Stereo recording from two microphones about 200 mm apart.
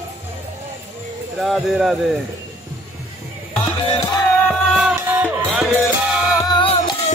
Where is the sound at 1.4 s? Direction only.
Centre (ahead or behind).